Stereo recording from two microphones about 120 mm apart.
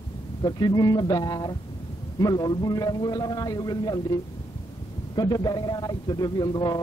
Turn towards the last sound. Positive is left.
turn(degrees=35)  # may be behind; listen again after turning